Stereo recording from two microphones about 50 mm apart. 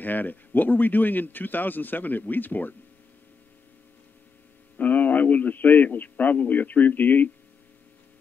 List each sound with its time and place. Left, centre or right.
0.0 s speech: left
4.7 s a man's voice: left